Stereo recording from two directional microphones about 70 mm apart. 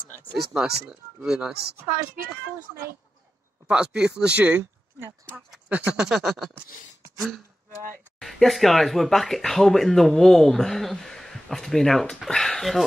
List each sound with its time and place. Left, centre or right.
0.3 s speech: centre
3.6 s speech: centre
5.7 s a sound: centre
5.9 s speech: centre